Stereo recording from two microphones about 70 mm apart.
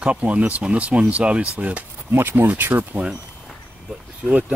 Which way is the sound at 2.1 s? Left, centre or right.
Right.